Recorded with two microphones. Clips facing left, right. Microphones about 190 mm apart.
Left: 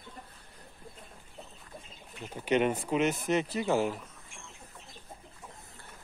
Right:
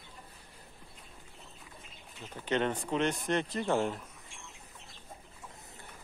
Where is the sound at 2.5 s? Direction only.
10° left (ahead or behind).